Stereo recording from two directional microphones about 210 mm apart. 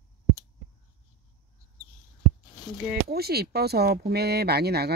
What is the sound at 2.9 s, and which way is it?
Speech, 45° right (ahead or behind).